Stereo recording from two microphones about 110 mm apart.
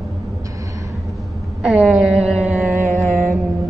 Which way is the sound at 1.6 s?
10° right (ahead or behind).